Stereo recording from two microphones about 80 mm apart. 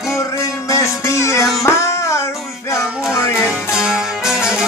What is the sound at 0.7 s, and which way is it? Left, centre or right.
Music, left.